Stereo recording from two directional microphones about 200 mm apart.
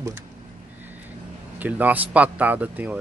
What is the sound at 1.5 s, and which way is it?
Speech, 10° right (ahead or behind).